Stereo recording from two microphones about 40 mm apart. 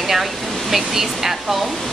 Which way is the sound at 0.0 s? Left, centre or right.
Centre.